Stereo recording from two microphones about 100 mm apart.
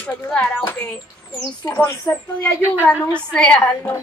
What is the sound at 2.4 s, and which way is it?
A woman's voice, 15° left (ahead or behind).